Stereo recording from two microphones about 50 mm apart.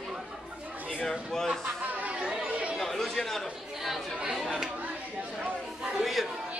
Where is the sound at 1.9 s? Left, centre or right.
Right.